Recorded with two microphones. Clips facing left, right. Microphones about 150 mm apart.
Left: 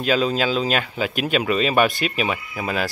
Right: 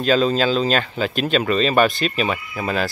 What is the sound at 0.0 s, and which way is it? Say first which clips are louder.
Speech: right 3 dB; 10° left (ahead or behind).